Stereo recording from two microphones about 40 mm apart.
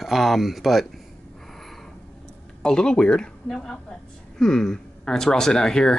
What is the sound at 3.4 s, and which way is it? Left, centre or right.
Speech, centre.